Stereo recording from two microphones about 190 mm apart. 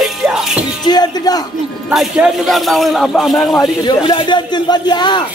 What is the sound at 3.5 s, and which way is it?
Speech, 20° left (ahead or behind).